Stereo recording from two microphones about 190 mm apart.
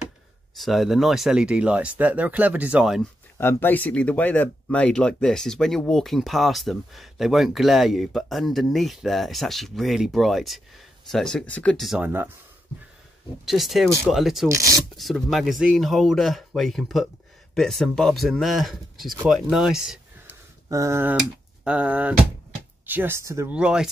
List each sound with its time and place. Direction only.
0.6 s speech: centre (ahead or behind)
3.3 s speech: 10° left (ahead or behind); by 12.3 s 10° right (ahead or behind)
13.5 s speech: centre (ahead or behind)
14.5 s speech: 15° right (ahead or behind)
15.0 s speech: centre (ahead or behind)
19.5 s a sound: centre (ahead or behind)
20.6 s speech: 15° right (ahead or behind)